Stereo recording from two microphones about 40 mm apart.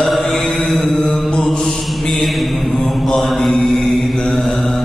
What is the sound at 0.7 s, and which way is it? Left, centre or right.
Mantra, centre.